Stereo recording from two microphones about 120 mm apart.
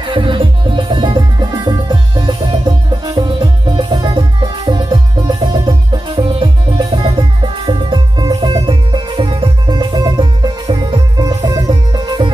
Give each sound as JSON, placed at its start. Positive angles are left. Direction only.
{"t": 0.0, "sound": "music", "side_deg": -45}